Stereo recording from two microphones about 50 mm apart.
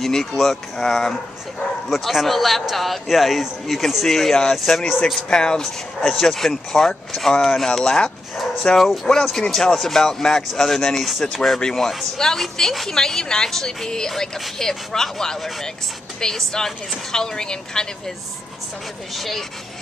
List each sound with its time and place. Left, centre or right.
0.0 s speech: centre
1.9 s a man's voice: centre
4.7 s a man's voice: centre
5.3 s speech: centre
7.8 s speech: centre
9.1 s a man's voice: centre
19.1 s a man's voice: centre